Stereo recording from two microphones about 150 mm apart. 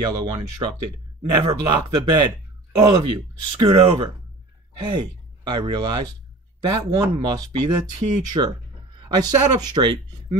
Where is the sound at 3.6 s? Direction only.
35° right (ahead or behind).